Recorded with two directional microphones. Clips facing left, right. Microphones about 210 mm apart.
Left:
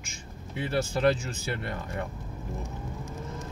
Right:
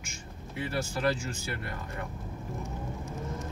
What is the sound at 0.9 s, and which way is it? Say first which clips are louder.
Speech: left 5 dB; 20° left (ahead or behind).